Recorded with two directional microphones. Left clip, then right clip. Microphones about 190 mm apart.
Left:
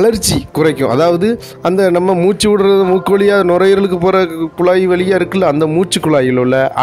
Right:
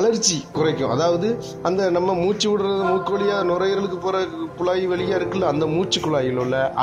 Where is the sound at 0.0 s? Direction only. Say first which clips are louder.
Left 7 dB; 45° left (ahead or behind).